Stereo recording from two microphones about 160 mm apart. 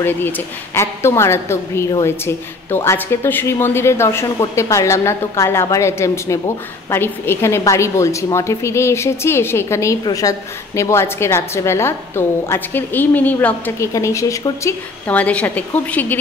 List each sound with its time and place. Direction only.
0.7 s a woman's voice: 15° left (ahead or behind)